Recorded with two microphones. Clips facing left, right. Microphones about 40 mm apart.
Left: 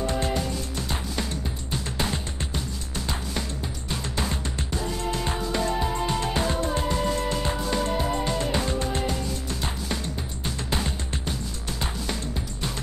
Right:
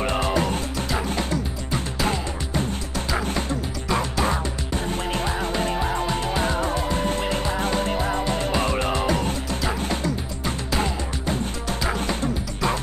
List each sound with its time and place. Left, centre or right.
0.0 s music: right
1.7 s music: right
3.9 s music: right